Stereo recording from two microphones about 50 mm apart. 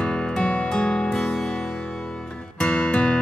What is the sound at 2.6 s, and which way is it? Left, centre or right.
Music, centre.